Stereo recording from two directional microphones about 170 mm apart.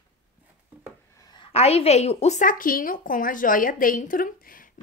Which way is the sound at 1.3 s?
35° left (ahead or behind).